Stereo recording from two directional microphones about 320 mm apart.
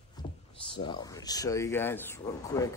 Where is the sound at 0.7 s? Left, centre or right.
Centre.